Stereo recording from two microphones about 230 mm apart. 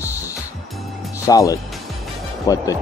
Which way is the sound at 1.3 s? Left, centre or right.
Centre.